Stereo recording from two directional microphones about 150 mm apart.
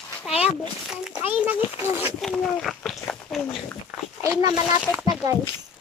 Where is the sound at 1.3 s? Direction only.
10° right (ahead or behind).